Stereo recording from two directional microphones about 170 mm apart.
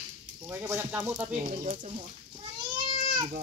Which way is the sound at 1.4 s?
40° right (ahead or behind).